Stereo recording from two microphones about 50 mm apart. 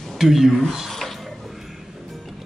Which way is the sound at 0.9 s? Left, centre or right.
Centre.